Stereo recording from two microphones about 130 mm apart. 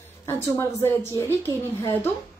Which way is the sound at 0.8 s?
20° left (ahead or behind).